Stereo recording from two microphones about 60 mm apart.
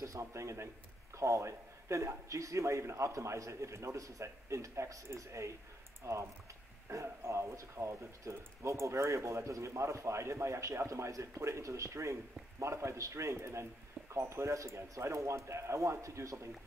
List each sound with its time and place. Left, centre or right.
0.0 s speech: right